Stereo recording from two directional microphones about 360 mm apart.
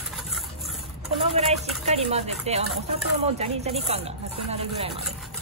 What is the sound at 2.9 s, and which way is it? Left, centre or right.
Speech, centre.